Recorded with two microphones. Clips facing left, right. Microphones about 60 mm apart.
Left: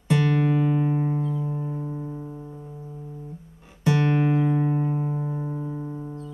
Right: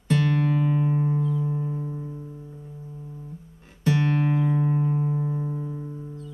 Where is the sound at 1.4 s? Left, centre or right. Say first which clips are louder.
Right 1 dB; centre.